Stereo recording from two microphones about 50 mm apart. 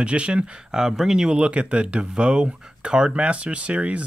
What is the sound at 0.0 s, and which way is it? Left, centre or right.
Speech, right.